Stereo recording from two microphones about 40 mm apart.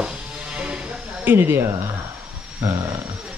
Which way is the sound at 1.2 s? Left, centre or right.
Right.